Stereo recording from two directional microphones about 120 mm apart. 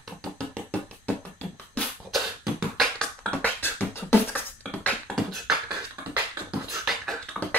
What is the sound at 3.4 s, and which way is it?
Beatboxing, 20° left (ahead or behind).